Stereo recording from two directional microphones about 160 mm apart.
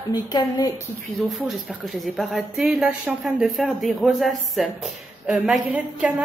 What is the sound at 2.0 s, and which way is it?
A woman's voice, centre (ahead or behind).